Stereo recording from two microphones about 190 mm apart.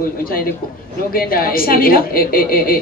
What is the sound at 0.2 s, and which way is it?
A woman's voice, 50° left (ahead or behind).